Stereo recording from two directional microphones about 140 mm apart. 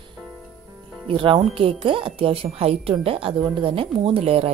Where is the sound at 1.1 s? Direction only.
40° right (ahead or behind).